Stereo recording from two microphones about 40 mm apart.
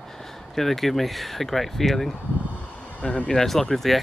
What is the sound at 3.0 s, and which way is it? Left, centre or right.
Speech, left.